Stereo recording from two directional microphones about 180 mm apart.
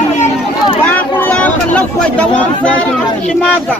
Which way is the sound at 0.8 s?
10° left (ahead or behind).